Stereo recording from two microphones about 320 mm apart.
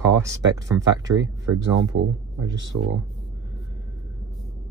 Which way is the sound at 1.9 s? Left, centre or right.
Right.